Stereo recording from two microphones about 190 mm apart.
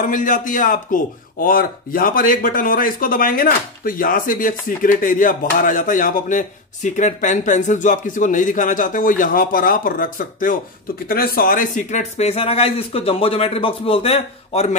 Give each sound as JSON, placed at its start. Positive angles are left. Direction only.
{"t": 0.0, "sound": "speech", "side_deg": 45}